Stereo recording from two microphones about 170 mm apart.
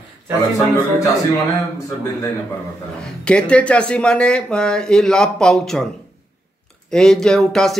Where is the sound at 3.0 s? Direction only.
5° left (ahead or behind).